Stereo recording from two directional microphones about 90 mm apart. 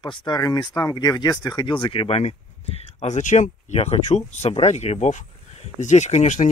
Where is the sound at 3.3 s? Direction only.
90° left.